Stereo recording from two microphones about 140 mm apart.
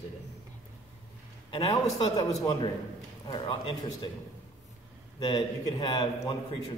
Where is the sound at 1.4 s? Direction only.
30° left (ahead or behind).